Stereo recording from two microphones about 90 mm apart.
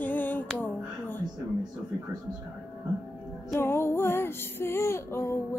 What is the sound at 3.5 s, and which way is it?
Music, 25° left (ahead or behind).